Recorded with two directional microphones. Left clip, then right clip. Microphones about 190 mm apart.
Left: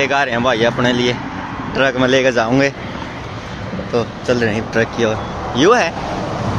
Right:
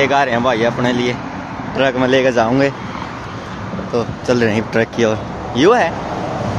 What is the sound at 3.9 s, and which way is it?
Speech, 15° right (ahead or behind).